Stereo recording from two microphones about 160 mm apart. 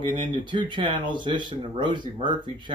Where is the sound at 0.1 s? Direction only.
30° right (ahead or behind).